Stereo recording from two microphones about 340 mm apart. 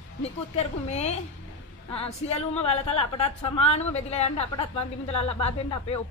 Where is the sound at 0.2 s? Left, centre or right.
Centre.